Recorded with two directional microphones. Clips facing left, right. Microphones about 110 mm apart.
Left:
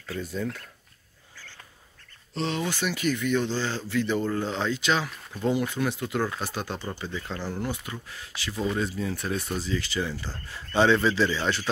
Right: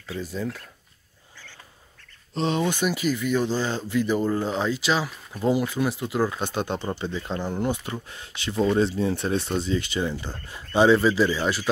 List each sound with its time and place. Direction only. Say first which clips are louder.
0.2 s speech: right 1 dB; 5° right (ahead or behind)
2.3 s speech: right 5 dB; 20° right (ahead or behind)
6.4 s speech: right 5 dB; 25° right (ahead or behind)